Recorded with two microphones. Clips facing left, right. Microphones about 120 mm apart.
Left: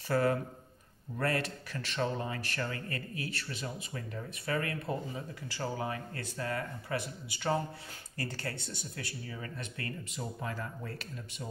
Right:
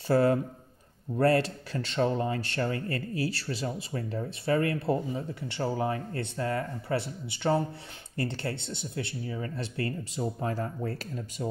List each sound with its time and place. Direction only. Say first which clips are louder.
0.1 s speech: right 6 dB; 30° right (ahead or behind)